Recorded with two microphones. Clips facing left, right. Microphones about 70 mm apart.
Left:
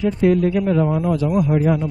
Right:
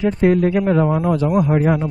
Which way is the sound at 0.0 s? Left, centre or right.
Right.